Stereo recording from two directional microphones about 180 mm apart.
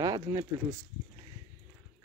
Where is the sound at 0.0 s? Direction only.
20° right (ahead or behind).